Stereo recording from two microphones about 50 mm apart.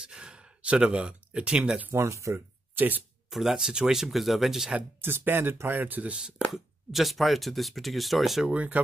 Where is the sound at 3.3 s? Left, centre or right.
Centre.